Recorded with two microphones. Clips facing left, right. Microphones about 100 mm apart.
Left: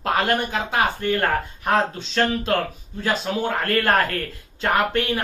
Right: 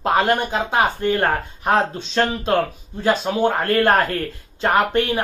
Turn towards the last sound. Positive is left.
turn(degrees=-20)  # may be behind; listen again after turning